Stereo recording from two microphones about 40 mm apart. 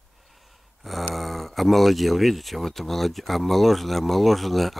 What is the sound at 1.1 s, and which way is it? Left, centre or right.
Speech, centre.